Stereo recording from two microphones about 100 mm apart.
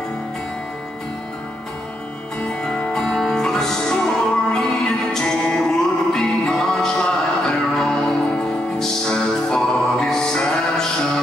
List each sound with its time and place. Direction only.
2.6 s music: 5° left (ahead or behind)